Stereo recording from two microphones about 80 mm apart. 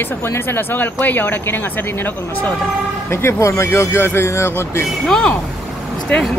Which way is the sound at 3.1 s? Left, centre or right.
Left.